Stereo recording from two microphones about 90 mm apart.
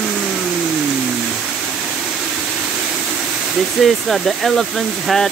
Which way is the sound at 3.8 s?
Centre (ahead or behind).